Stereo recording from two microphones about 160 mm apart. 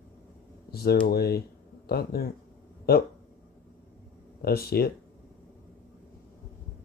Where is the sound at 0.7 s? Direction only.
75° left (ahead or behind).